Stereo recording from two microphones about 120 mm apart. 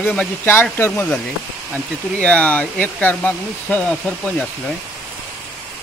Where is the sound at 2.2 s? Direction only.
10° left (ahead or behind).